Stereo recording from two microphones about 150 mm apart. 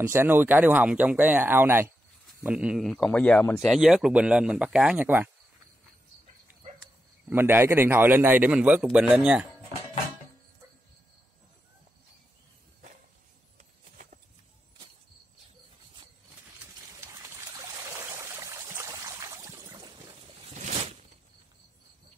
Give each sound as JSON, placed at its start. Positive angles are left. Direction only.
{"t": 0.0, "sound": "speech", "side_deg": -15}
{"t": 3.5, "sound": "speech", "side_deg": 0}
{"t": 7.2, "sound": "speech", "side_deg": -15}
{"t": 17.0, "sound": "a sound", "side_deg": -20}